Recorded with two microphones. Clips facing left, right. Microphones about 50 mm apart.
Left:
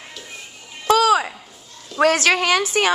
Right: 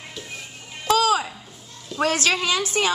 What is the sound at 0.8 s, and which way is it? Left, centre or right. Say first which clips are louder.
Music: left 4 dB; left.